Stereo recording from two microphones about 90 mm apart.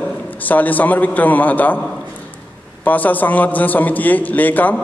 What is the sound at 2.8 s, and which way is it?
A man's voice, 20° left (ahead or behind).